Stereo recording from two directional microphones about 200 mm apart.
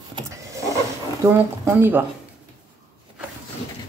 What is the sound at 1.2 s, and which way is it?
Speech, 15° right (ahead or behind).